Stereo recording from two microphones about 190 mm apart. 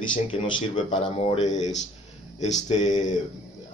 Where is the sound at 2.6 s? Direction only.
40° left (ahead or behind).